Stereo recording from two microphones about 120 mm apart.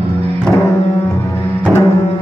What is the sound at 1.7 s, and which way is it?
Music, 25° left (ahead or behind).